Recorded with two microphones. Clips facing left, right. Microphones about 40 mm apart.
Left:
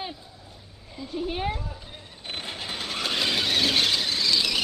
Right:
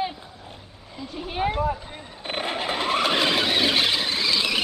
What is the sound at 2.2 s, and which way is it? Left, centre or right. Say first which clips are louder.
Squeal: right 8 dB; right.